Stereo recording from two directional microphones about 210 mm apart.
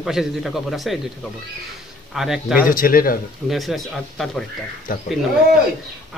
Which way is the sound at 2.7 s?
40° left (ahead or behind).